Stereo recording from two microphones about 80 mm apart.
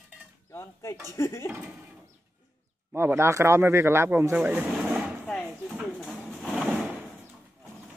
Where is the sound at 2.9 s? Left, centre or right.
Right.